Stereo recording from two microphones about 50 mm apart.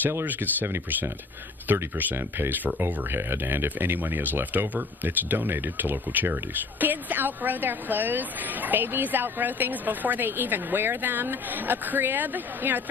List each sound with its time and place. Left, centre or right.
0.2 s speech: right